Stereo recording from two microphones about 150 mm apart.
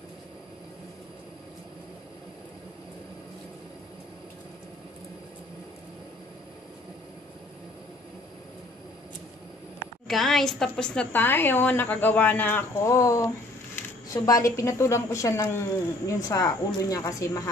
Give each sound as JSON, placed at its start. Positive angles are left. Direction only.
{"t": 10.0, "sound": "a woman's voice", "side_deg": 0}
{"t": 13.7, "sound": "a sound", "side_deg": 15}
{"t": 14.1, "sound": "a woman's voice", "side_deg": 25}